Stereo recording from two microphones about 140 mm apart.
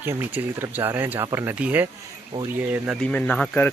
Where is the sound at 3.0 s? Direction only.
10° left (ahead or behind).